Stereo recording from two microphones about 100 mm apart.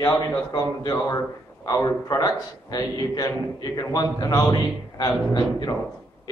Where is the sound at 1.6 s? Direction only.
35° left (ahead or behind).